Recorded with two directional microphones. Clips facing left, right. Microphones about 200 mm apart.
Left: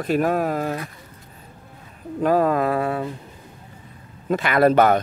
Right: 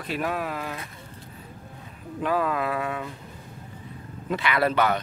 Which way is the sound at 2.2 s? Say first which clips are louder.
Left 7 dB; 40° left (ahead or behind).